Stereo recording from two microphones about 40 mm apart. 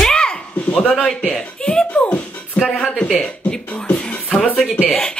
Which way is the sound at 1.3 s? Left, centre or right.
Centre.